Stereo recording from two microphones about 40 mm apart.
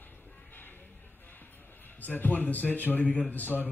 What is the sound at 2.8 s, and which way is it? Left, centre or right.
Speech, left.